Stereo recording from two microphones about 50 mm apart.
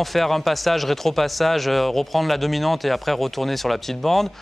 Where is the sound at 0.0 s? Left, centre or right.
Centre.